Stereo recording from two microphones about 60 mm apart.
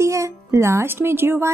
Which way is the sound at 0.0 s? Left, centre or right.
Right.